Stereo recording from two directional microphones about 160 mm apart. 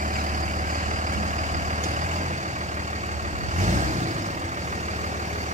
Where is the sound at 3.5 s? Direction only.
50° right (ahead or behind).